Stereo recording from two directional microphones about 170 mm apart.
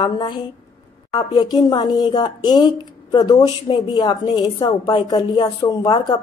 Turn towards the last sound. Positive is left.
turn(degrees=25)  # may be behind; listen again after turning